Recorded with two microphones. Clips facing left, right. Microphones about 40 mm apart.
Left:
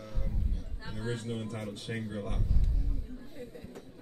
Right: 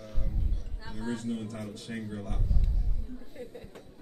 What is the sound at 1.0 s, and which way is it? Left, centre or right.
Speech, left.